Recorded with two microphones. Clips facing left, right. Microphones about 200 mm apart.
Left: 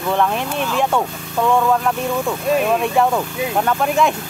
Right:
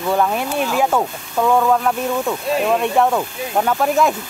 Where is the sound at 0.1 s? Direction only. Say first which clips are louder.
Right 1 dB; 5° right (ahead or behind).